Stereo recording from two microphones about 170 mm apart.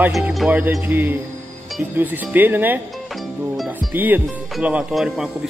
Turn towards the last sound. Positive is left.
turn(degrees=-5)  # may be behind; listen again after turning